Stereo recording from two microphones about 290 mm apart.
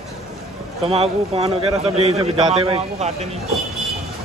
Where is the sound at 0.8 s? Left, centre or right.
Right.